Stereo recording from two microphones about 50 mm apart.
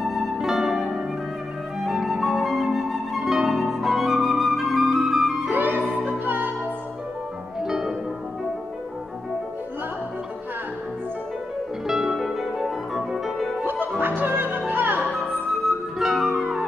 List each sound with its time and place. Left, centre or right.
0.0 s music: centre
1.8 s flute: centre
5.5 s music: right
7.6 s music: centre
11.9 s music: centre
13.7 s music: right
15.0 s flute: centre